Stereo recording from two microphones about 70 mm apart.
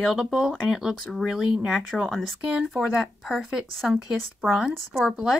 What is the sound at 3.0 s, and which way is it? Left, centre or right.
Speech, centre.